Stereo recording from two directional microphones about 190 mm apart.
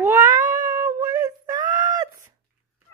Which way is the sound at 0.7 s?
20° right (ahead or behind).